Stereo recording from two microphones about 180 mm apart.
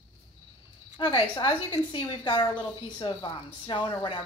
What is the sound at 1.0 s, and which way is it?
A woman's voice, 25° left (ahead or behind).